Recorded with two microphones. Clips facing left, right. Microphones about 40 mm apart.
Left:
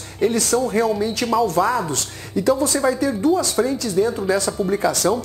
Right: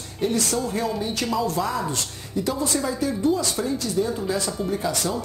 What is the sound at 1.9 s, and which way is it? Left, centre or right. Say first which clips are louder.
Speech: left 3 dB; left.